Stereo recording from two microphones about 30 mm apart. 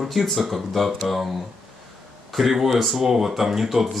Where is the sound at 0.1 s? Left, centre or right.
Centre.